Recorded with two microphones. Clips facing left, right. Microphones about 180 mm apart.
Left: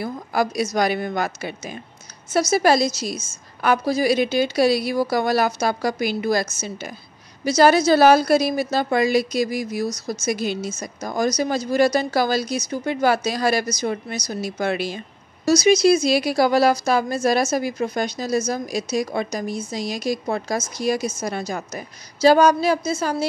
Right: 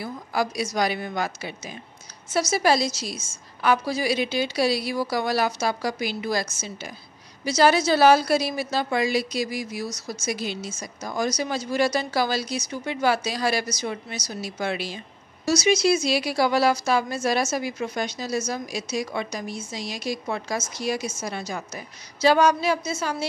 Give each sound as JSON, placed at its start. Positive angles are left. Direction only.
{"t": 0.0, "sound": "a woman's voice", "side_deg": 50}
{"t": 15.4, "sound": "a woman's voice", "side_deg": 40}